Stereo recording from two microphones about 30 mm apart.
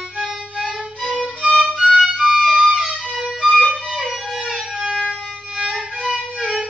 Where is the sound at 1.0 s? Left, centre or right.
Centre.